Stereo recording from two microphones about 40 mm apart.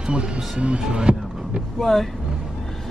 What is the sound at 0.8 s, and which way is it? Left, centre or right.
Music, right.